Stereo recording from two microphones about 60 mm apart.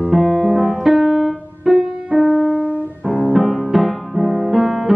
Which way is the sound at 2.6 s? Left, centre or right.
Right.